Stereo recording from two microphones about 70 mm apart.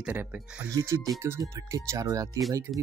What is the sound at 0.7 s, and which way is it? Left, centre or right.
Speech, right.